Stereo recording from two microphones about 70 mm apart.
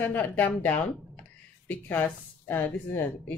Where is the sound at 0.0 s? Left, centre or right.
Left.